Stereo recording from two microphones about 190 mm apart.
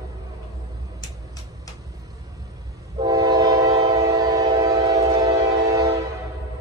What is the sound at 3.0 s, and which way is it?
Train, 20° right (ahead or behind).